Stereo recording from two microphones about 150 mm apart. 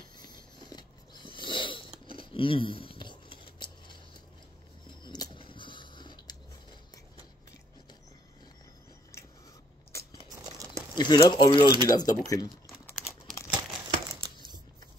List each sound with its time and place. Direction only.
0.2 s a sound: 30° left (ahead or behind)
5.0 s biting: 30° left (ahead or behind)
10.3 s crumpling: 25° right (ahead or behind)
11.0 s speech: 30° left (ahead or behind)
13.5 s crumpling: 30° right (ahead or behind)